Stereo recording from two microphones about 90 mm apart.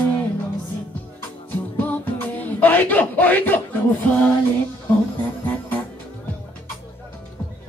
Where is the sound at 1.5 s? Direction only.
20° left (ahead or behind).